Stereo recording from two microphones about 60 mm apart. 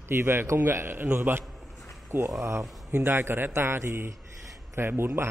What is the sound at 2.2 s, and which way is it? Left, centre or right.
Speech, right.